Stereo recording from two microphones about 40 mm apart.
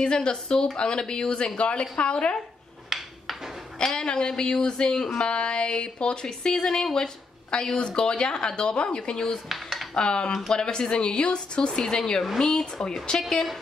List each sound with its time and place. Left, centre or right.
0.0 s a woman's voice: left
2.9 s a sound: centre
3.7 s a woman's voice: centre
9.5 s cutlery: centre
9.9 s a woman's voice: left
13.3 s a woman's voice: centre